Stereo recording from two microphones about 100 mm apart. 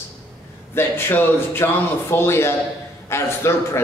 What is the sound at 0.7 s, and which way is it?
A man's voice, 25° left (ahead or behind).